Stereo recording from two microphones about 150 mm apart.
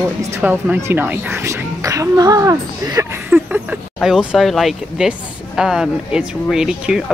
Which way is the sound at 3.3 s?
10° right (ahead or behind).